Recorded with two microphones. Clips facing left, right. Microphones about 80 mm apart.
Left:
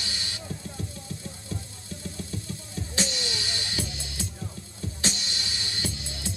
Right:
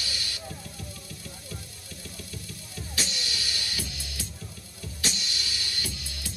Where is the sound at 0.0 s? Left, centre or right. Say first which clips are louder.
Left 1 dB; left.